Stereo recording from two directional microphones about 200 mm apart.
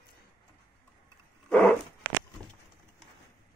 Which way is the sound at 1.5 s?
5° left (ahead or behind).